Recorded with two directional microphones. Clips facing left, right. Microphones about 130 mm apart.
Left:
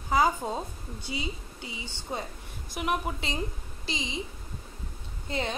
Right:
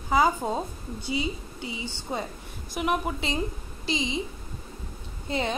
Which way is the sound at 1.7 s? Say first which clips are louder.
Right 3 dB; 25° right (ahead or behind).